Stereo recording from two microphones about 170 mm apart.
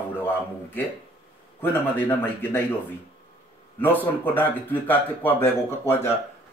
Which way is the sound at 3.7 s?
10° left (ahead or behind).